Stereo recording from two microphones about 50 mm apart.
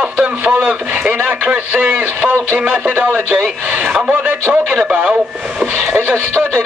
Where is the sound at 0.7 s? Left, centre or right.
Right.